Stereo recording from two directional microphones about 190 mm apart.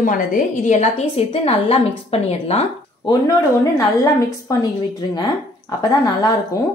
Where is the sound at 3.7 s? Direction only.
20° left (ahead or behind).